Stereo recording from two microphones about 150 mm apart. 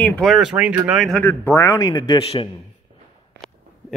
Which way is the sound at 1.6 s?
25° left (ahead or behind).